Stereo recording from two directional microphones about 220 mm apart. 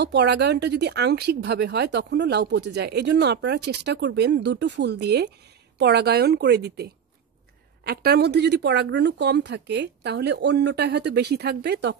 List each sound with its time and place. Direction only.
0.0 s speech: 50° right (ahead or behind)